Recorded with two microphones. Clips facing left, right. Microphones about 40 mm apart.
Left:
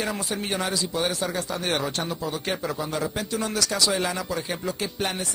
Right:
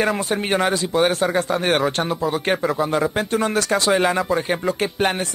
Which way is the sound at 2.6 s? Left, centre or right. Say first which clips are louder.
Right 8 dB; right.